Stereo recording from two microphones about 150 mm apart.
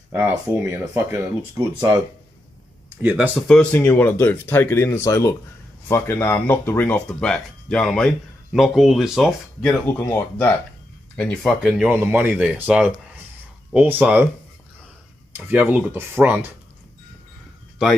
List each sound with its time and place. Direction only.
0.2 s speech: 15° right (ahead or behind)
3.0 s speech: 10° right (ahead or behind)
3.7 s speech: 10° left (ahead or behind)
11.9 s speech: 15° right (ahead or behind)
15.3 s speech: 10° right (ahead or behind)